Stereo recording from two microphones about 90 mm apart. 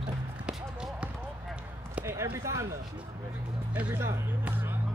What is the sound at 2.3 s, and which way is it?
Speech, 30° right (ahead or behind).